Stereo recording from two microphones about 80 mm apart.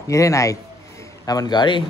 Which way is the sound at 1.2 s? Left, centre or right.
Left.